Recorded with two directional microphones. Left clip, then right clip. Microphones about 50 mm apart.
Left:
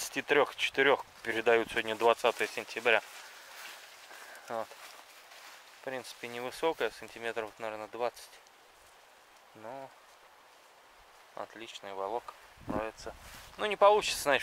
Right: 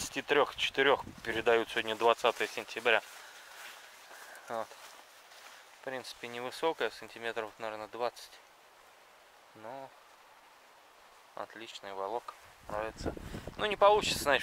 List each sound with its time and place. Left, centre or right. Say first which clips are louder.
0.0 s speech: left 1 dB; centre
4.5 s speech: left 1 dB; centre
5.9 s speech: left 1 dB; centre
9.6 s speech: left 1 dB; centre
11.3 s speech: even; centre